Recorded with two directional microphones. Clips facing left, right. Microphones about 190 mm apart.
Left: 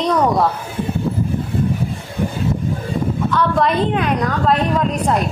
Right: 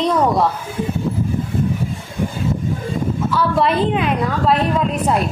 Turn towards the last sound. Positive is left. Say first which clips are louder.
# even
turn(degrees=-5)  # may be behind; listen again after turning